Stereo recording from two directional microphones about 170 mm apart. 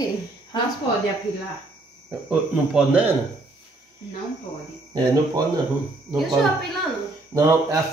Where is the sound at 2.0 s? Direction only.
5° right (ahead or behind).